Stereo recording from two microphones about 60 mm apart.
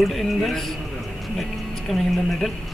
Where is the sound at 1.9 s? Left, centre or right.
Centre.